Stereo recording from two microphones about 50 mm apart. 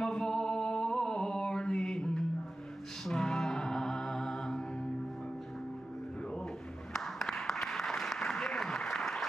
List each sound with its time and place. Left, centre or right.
0.0 s music: centre
6.9 s applause: centre